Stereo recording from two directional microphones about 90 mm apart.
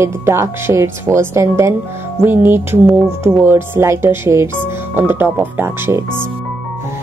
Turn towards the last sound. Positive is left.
turn(degrees=-25)  # may be behind; listen again after turning